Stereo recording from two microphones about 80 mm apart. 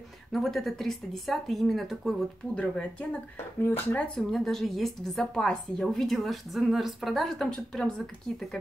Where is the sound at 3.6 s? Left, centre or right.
Left.